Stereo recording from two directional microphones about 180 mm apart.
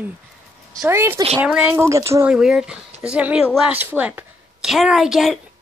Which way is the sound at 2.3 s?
5° right (ahead or behind).